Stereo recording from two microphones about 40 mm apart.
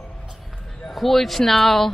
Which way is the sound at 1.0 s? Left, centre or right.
Centre.